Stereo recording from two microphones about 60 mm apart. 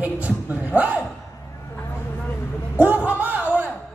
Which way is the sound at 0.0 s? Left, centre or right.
Right.